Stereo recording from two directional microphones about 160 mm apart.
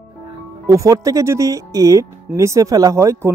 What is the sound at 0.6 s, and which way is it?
Speech, 20° right (ahead or behind).